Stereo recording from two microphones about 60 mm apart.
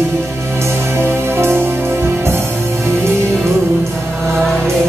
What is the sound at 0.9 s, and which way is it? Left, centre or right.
Music, right.